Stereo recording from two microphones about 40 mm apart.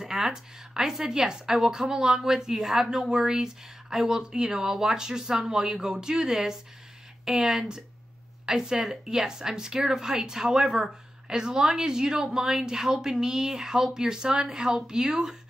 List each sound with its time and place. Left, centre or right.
0.0 s speech: centre
4.6 s speech: centre
4.9 s a woman's voice: centre